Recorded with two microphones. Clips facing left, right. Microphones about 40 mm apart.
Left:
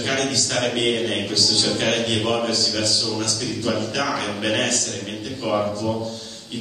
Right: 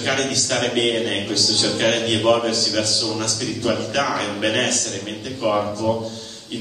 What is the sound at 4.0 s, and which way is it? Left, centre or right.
Mantra, centre.